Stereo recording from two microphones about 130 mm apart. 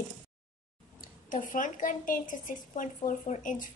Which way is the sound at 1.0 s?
90° left.